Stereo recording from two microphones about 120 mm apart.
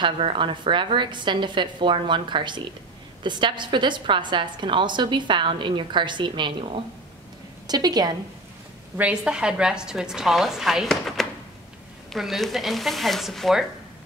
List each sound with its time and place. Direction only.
0.0 s a woman's voice: 45° right (ahead or behind)
7.6 s a woman's voice: 35° right (ahead or behind)
8.9 s a woman's voice: 10° right (ahead or behind)